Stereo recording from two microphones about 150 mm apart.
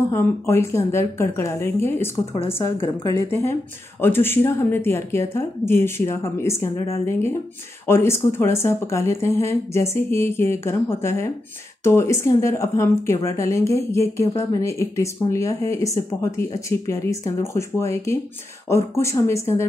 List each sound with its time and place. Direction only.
0.1 s speech: 20° left (ahead or behind)